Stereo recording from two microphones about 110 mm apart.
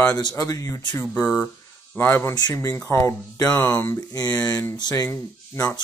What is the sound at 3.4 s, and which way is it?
Speech, 10° left (ahead or behind).